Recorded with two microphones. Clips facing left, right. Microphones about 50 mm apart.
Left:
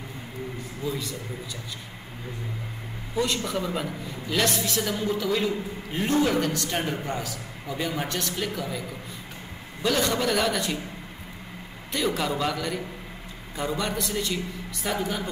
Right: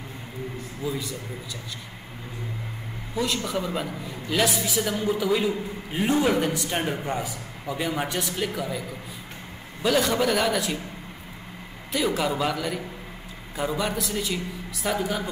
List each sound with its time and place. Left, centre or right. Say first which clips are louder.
0.8 s a woman's voice: right 1 dB; centre
3.2 s a woman's voice: even; centre
9.8 s a man's voice: right 2 dB; centre
11.9 s a man's voice: right 2 dB; centre